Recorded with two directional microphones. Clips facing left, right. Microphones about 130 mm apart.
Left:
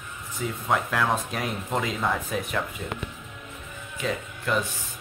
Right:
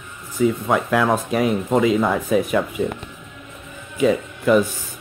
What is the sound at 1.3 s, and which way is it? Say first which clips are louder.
Speech: right 10 dB; 5° right (ahead or behind).